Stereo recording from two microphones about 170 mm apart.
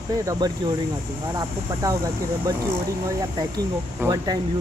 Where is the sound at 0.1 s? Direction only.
20° right (ahead or behind).